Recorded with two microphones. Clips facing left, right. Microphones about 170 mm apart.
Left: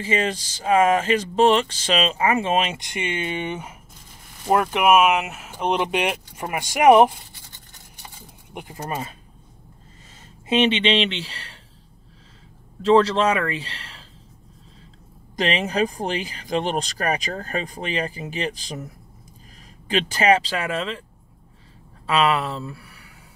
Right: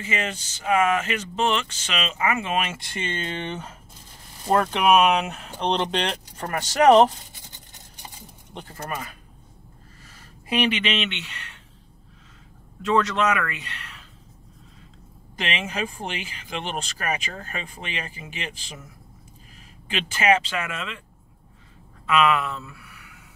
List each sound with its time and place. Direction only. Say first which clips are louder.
0.0 s speech: left 6 dB; 35° left (ahead or behind); by 7.2 s 10° left (ahead or behind)
7.3 s a sound: right 1 dB; 20° right (ahead or behind)
8.5 s speech: left 3 dB; 15° left (ahead or behind)
10.5 s speech: left 5 dB; 25° left (ahead or behind)
12.8 s speech: left 5 dB; 30° left (ahead or behind)
15.3 s speech: left 7 dB; 40° left (ahead or behind)
19.9 s speech: left 3 dB; 35° left (ahead or behind)
22.0 s speech: left 1 dB; 30° left (ahead or behind)